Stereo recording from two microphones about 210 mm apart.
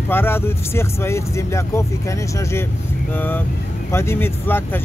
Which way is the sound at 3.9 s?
10° left (ahead or behind).